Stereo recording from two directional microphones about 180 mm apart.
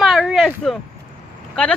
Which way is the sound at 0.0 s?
Centre (ahead or behind).